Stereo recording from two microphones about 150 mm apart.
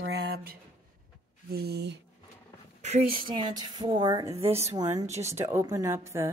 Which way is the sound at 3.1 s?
30° right (ahead or behind).